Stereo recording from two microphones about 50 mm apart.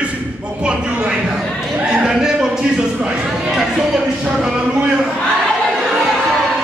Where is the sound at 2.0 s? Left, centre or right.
Centre.